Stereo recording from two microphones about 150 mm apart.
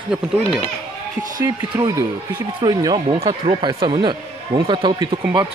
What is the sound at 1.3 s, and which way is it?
Speech, 25° right (ahead or behind).